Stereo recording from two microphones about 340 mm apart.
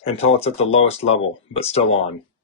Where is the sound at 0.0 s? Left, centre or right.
Centre.